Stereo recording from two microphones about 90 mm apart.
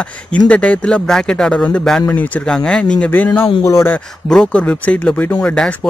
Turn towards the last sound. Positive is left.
turn(degrees=10)  # may be behind; listen again after turning